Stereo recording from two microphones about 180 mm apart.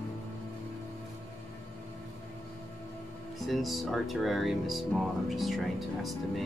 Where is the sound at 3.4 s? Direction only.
Centre (ahead or behind).